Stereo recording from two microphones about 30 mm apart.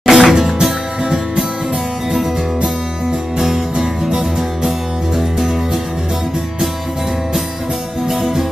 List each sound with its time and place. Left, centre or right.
0.0 s music: centre
3.3 s music: centre
8.1 s music: centre